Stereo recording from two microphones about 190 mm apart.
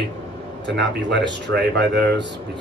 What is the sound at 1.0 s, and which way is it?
Speech, 65° right (ahead or behind).